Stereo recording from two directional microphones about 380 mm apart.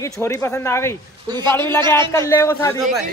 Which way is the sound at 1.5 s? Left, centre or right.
Centre.